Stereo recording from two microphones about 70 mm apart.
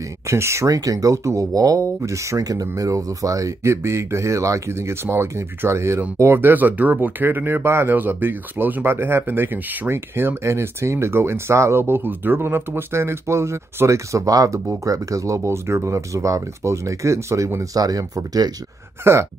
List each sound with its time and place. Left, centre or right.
0.3 s speech: right
0.7 s speech: right
17.8 s speech: right
19.1 s speech: right